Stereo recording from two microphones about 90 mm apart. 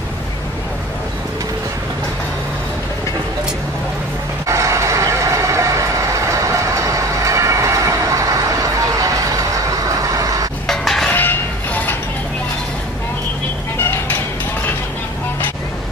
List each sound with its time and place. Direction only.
4.5 s vehicle: 35° right (ahead or behind)
10.7 s music: 5° left (ahead or behind)
11.1 s a sound: 20° left (ahead or behind)
13.7 s music: 30° left (ahead or behind)